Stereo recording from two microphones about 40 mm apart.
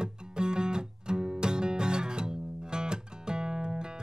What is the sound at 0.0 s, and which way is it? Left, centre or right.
Music, right.